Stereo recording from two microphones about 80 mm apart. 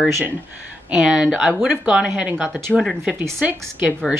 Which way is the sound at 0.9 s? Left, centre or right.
Centre.